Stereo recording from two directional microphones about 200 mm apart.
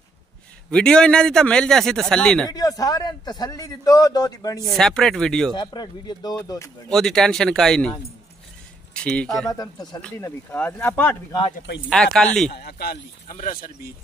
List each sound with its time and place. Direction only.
0.7 s a man's voice: 5° left (ahead or behind)
2.5 s a man's voice: 20° left (ahead or behind)
4.6 s a man's voice: centre (ahead or behind)
5.5 s a man's voice: 20° left (ahead or behind)
6.9 s a man's voice: 5° left (ahead or behind)
8.9 s a man's voice: 5° left (ahead or behind)
9.5 s a man's voice: 20° left (ahead or behind); by 12.3 s 5° left (ahead or behind)
12.4 s speech: 50° left (ahead or behind)